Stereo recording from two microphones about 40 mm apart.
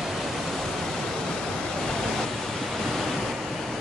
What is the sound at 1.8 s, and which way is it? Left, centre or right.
Waves, centre.